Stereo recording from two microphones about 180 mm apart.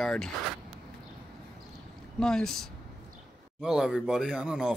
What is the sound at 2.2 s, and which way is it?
Speech, 5° left (ahead or behind).